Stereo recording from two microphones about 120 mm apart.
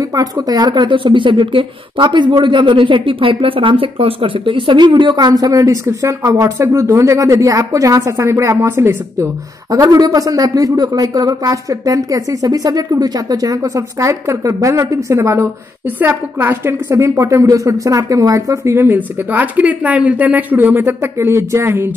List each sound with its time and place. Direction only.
0.0 s a woman's voice: 30° right (ahead or behind)